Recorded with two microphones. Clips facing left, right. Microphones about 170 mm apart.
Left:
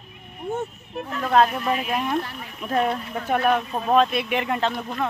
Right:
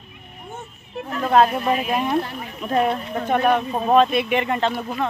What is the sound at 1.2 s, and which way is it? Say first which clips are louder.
Speech: right 3 dB; 10° right (ahead or behind).